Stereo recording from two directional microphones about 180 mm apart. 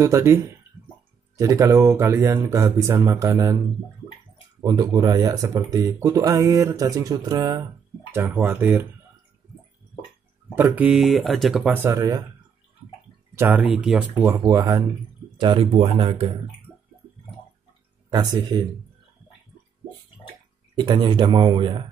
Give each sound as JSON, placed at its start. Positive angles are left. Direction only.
{"t": 0.0, "sound": "speech", "side_deg": -15}
{"t": 4.6, "sound": "speech", "side_deg": -20}
{"t": 8.1, "sound": "speech", "side_deg": -10}
{"t": 10.5, "sound": "speech", "side_deg": -10}
{"t": 11.8, "sound": "speech", "side_deg": -20}
{"t": 13.3, "sound": "speech", "side_deg": -10}
{"t": 18.1, "sound": "speech", "side_deg": -20}
{"t": 20.7, "sound": "speech", "side_deg": -25}